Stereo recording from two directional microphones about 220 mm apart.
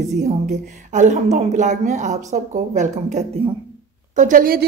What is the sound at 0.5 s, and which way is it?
A woman's voice, 35° right (ahead or behind).